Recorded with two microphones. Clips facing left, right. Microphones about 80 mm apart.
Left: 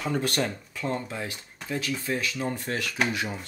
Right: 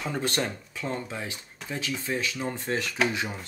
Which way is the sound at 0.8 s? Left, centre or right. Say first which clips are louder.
Left 2 dB; centre.